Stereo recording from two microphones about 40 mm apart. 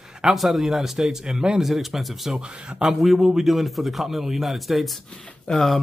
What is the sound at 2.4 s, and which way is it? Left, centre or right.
Speech, right.